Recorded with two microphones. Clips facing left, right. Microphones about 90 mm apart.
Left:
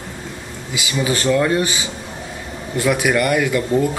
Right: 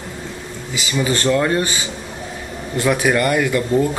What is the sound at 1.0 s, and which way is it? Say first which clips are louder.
Speech: right 1 dB; 15° left (ahead or behind).